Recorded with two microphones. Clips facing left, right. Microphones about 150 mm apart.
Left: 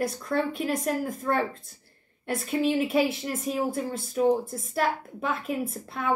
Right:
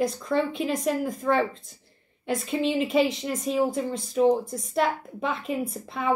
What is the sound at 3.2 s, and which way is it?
A woman's voice, 5° left (ahead or behind).